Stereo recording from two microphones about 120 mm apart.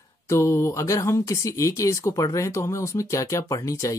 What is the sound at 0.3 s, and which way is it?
Speech, 20° left (ahead or behind).